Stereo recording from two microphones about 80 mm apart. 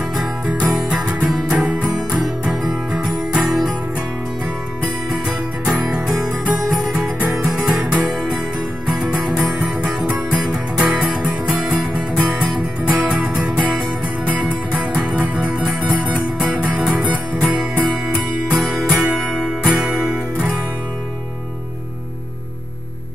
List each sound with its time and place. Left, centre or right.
0.1 s music: centre
2.9 s music: centre
5.9 s music: centre
11.2 s music: centre
11.8 s music: centre